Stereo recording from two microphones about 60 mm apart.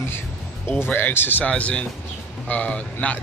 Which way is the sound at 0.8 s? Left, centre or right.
Left.